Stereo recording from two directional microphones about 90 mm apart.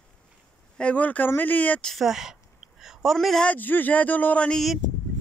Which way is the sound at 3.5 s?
20° left (ahead or behind).